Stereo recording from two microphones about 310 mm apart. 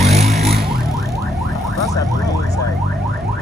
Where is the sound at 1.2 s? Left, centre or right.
Centre.